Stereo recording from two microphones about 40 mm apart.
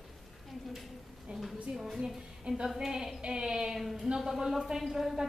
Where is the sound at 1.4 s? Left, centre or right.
Centre.